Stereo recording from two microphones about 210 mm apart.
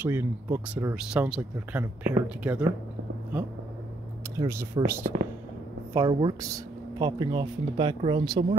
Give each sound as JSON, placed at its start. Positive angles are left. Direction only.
{"t": 0.0, "sound": "speech", "side_deg": -10}
{"t": 4.4, "sound": "speech", "side_deg": -15}